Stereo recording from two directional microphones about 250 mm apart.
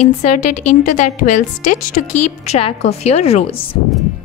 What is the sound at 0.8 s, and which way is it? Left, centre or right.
Speech, left.